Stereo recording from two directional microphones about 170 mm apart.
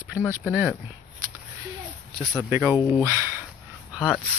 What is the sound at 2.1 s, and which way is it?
Speech, 10° right (ahead or behind).